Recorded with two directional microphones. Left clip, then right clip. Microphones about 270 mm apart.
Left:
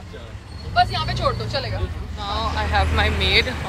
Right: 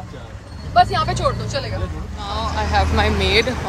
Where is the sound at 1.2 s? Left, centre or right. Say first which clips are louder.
Right 1 dB; centre.